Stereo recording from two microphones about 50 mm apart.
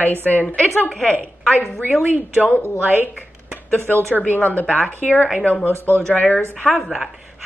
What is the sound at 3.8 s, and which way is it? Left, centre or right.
A woman's voice, left.